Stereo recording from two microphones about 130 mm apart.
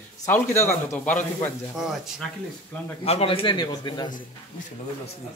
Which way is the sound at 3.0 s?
50° left (ahead or behind).